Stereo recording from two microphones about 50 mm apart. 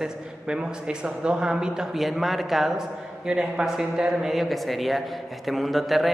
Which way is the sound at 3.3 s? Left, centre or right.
Centre.